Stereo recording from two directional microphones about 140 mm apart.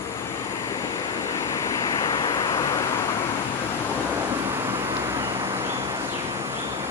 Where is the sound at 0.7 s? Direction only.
25° left (ahead or behind).